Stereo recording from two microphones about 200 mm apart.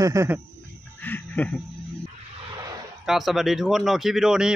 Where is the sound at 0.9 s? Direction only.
10° left (ahead or behind).